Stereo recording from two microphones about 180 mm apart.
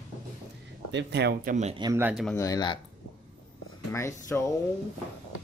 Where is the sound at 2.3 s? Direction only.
20° left (ahead or behind).